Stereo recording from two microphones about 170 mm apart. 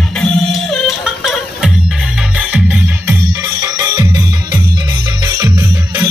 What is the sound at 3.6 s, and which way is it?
Music, 20° right (ahead or behind).